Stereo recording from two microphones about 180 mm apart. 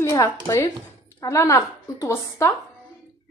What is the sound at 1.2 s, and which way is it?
A woman's voice, 15° left (ahead or behind).